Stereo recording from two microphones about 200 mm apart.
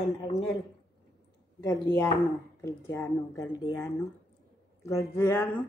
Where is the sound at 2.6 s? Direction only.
15° left (ahead or behind).